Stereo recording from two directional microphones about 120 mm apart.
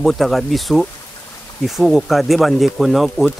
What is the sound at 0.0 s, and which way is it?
Speech, 5° left (ahead or behind).